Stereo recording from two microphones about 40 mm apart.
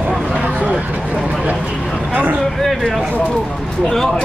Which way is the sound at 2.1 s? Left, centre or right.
Right.